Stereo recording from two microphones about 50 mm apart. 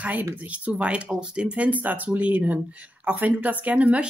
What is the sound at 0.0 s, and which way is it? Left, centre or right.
Speech, right.